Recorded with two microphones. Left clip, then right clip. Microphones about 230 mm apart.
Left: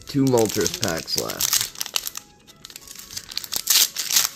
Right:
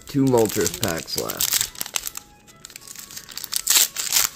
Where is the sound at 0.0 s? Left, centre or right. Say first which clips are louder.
Right 1 dB; centre.